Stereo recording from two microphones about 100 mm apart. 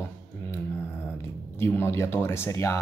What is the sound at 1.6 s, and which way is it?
Speech, 25° left (ahead or behind).